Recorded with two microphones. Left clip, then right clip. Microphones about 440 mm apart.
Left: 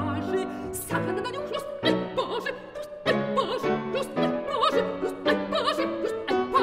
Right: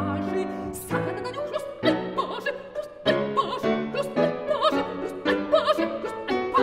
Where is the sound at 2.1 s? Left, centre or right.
Left.